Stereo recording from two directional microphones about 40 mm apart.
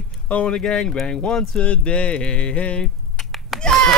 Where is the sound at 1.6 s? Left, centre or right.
Left.